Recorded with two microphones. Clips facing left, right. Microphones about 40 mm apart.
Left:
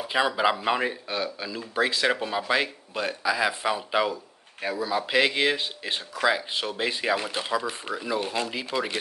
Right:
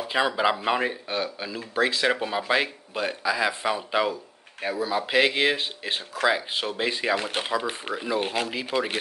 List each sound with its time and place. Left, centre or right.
0.1 s speech: centre
7.2 s speech: right
7.9 s speech: right